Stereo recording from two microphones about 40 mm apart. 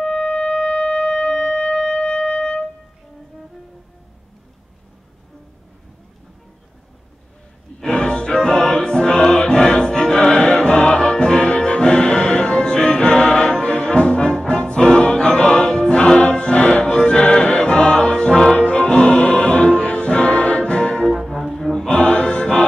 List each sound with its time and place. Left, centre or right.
0.0 s wind instrument: centre
0.7 s shofar: left
1.0 s wind instrument: centre
1.8 s music: left
7.8 s music: left
18.3 s music: centre
18.7 s music: left
21.8 s music: left